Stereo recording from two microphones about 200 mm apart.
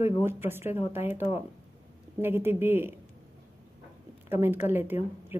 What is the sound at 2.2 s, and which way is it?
Speech, 10° right (ahead or behind).